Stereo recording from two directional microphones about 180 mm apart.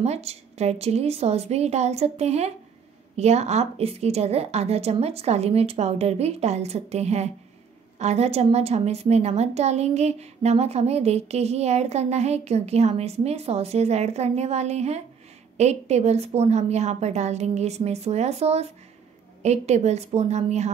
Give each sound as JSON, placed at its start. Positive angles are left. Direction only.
{"t": 0.0, "sound": "a woman's voice", "side_deg": -35}